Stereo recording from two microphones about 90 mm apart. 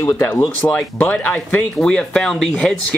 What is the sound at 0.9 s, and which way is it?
Speech, 15° left (ahead or behind).